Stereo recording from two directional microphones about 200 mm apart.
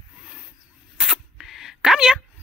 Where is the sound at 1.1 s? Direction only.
Centre (ahead or behind).